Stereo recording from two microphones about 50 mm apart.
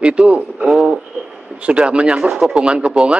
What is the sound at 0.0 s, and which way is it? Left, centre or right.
A man's voice, right.